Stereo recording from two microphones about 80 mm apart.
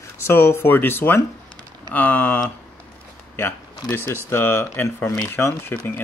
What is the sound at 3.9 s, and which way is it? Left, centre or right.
Speech, left.